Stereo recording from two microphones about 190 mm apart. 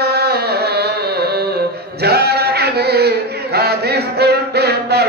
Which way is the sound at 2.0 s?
55° right (ahead or behind).